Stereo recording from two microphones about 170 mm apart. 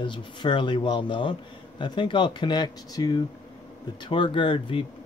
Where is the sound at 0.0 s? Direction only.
30° left (ahead or behind).